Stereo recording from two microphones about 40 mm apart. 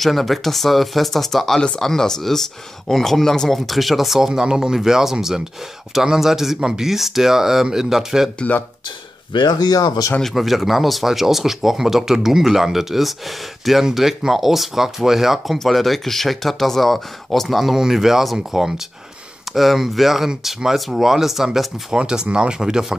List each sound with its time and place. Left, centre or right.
0.0 s speech: centre
4.3 s speech: centre
10.3 s speech: centre
21.9 s speech: centre